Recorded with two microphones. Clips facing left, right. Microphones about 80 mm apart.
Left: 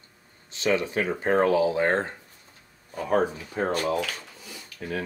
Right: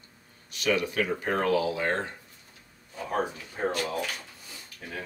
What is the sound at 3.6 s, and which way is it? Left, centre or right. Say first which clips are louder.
Speech: left 3 dB; left.